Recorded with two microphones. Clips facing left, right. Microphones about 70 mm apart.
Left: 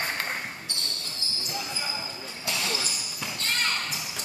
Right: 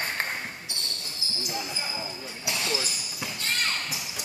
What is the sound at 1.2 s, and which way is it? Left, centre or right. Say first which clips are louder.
Basketball bounce: right 2 dB; centre.